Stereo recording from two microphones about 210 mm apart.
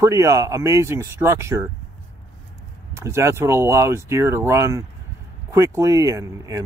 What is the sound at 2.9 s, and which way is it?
Speech, 15° right (ahead or behind).